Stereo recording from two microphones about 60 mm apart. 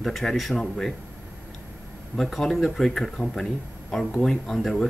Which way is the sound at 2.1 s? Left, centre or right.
Centre.